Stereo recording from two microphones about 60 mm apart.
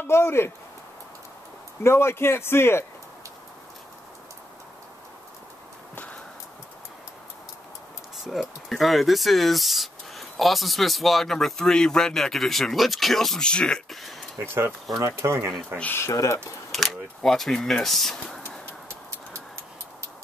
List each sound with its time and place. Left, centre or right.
0.0 s speech: left
1.8 s a man's voice: left
8.2 s speech: centre
13.5 s speech: centre
14.4 s speech: right
14.9 s speech: right
15.2 s speech: right
16.1 s speech: left
16.7 s speech: centre